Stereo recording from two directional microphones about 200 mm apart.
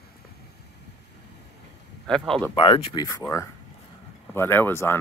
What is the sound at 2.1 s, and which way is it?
Speech, 5° left (ahead or behind).